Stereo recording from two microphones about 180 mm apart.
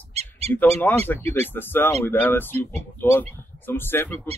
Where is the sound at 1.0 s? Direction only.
10° left (ahead or behind).